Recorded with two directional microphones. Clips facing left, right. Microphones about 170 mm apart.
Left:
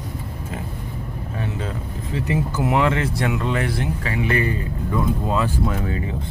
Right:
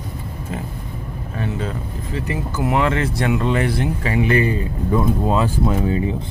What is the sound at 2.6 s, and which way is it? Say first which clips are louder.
Speech: right 2 dB; 10° left (ahead or behind).